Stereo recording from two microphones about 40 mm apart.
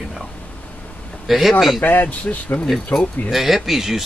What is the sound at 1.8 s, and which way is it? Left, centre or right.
Speech, left.